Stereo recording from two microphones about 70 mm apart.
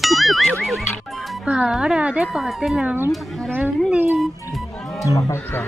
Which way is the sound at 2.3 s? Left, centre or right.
Centre.